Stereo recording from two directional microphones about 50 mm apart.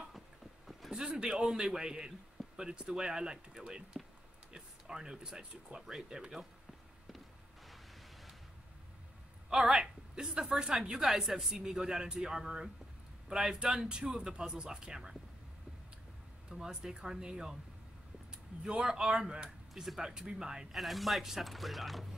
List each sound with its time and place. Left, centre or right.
0.7 s a man's voice: centre
4.5 s a sound: centre
5.4 s a woman's voice: centre
9.5 s a woman's voice: centre
16.4 s a woman's voice: centre
19.7 s a woman's voice: centre
20.7 s speech: centre